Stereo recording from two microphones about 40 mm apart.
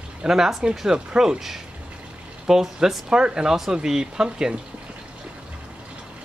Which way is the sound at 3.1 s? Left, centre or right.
Centre.